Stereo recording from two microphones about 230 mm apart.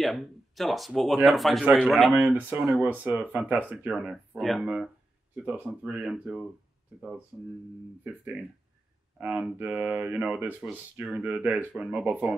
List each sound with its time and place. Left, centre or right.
0.0 s speech: centre
9.2 s speech: centre